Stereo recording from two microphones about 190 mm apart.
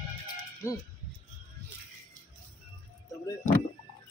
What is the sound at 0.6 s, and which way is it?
Speech, 15° left (ahead or behind).